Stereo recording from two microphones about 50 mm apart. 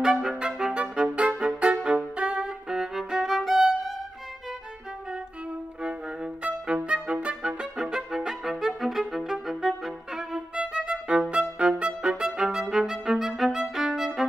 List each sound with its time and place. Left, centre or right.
0.0 s music: centre
0.7 s music: right
2.7 s violin: centre
5.8 s music: centre
7.7 s music: centre
10.5 s violin: centre
12.3 s music: centre
13.4 s violin: centre